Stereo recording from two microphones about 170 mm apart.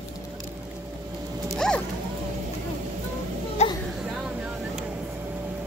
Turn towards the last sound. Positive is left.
turn(degrees=40)  # may be behind; listen again after turning